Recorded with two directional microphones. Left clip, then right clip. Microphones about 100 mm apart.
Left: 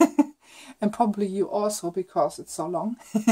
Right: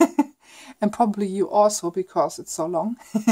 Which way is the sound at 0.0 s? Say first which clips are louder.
Right 1 dB; 25° right (ahead or behind).